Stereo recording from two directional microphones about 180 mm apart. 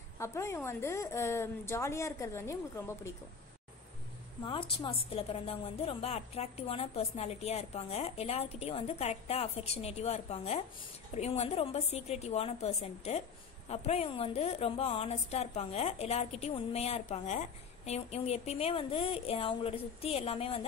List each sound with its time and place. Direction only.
0.2 s a woman's voice: 15° left (ahead or behind)
4.5 s a woman's voice: 30° left (ahead or behind)